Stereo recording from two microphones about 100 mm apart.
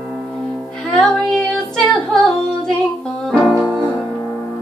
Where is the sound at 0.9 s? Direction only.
5° left (ahead or behind).